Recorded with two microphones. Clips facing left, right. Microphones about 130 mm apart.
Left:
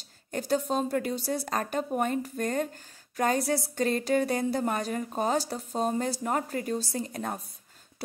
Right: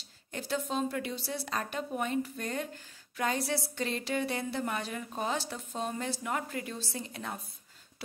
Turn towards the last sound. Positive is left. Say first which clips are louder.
# left 6 dB
turn(degrees=45)  # may be behind; listen again after turning